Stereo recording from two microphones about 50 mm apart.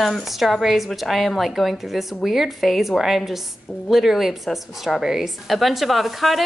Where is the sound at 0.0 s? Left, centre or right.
Centre.